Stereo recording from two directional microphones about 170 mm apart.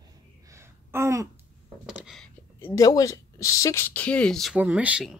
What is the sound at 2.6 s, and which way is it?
Speech, 20° left (ahead or behind).